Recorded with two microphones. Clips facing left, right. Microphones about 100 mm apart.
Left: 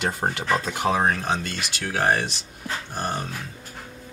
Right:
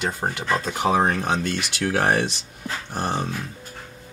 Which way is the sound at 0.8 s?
15° right (ahead or behind).